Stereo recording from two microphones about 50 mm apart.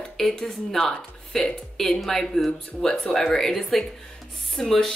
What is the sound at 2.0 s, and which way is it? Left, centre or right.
A woman's voice, centre.